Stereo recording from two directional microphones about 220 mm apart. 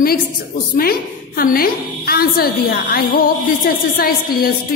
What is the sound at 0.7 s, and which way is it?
A woman's voice, 40° left (ahead or behind).